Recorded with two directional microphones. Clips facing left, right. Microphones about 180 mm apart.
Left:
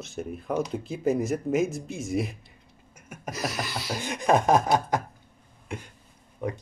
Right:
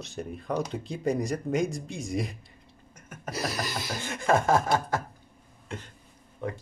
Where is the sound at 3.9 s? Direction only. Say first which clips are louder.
Left 3 dB; 15° left (ahead or behind).